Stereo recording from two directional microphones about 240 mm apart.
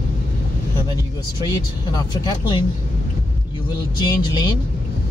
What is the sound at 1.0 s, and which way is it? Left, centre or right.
Speech, centre.